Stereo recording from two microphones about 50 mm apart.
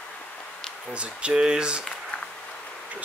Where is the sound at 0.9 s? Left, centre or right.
Right.